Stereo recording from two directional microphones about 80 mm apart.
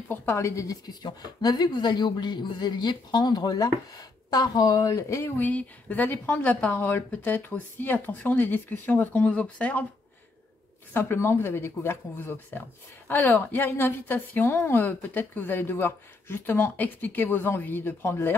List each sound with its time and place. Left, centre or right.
0.1 s a woman's voice: left
1.4 s a woman's voice: left
5.2 s a woman's voice: left
10.9 s a woman's voice: left